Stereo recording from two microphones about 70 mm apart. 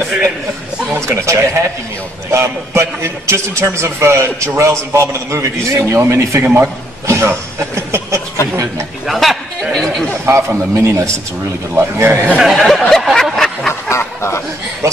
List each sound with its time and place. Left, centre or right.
0.9 s a man's voice: right
6.4 s a man's voice: right
7.1 s speech: right
9.0 s speech: centre
10.2 s speech: right
12.4 s speech: centre
12.9 s a sound: centre
13.8 s duck: left